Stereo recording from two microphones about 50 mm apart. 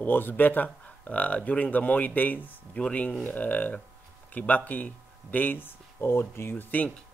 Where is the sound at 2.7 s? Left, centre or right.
Left.